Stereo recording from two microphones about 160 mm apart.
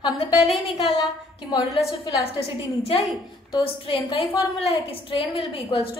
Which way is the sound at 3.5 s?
30° left (ahead or behind).